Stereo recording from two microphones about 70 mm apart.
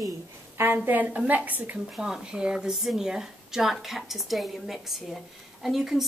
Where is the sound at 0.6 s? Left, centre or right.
Right.